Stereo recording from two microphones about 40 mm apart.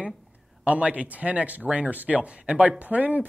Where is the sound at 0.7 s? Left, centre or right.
Right.